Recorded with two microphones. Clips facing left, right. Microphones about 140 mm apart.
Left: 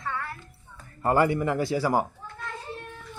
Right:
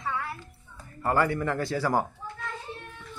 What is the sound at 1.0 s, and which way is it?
A man's voice, 20° left (ahead or behind).